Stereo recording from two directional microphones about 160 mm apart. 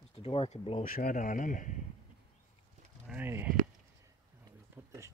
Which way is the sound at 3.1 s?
10° right (ahead or behind).